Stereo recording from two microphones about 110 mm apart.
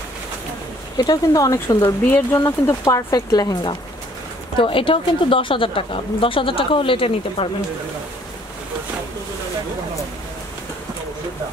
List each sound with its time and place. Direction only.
0.9 s speech: 35° left (ahead or behind)
1.8 s speech: 20° left (ahead or behind)
2.3 s speech: 30° left (ahead or behind)
4.6 s a woman's voice: 50° left (ahead or behind)